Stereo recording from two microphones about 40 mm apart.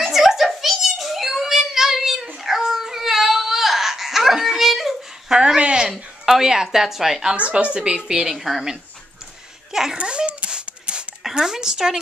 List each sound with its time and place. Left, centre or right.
0.1 s a sound: centre
2.4 s baby cry: centre
5.3 s a sound: centre
6.2 s a woman's voice: centre
7.3 s speech: right
7.7 s a woman's voice: right
9.7 s a sound: centre
9.9 s dog: right
11.3 s a woman's voice: centre